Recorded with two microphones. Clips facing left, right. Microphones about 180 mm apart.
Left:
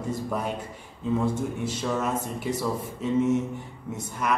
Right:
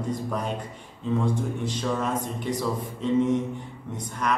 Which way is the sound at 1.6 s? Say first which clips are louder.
Even; 5° left (ahead or behind).